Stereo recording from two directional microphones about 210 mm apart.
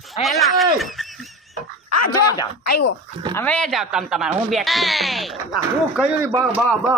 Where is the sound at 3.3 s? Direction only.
10° left (ahead or behind).